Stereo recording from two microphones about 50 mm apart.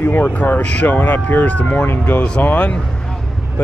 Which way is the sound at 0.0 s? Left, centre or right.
Left.